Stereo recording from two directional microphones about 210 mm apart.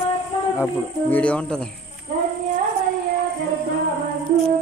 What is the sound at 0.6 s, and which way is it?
Speech, 10° left (ahead or behind).